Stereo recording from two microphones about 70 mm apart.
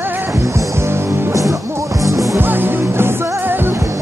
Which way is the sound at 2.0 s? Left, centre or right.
Right.